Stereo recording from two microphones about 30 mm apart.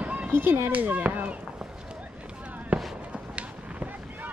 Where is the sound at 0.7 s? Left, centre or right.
Right.